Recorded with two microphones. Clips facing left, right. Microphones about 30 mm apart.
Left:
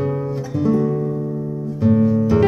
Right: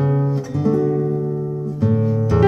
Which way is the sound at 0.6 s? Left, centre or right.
Centre.